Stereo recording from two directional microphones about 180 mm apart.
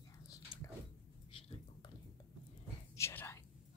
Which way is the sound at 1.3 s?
30° left (ahead or behind).